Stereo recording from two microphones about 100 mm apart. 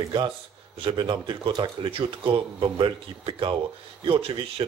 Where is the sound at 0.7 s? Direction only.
55° right (ahead or behind).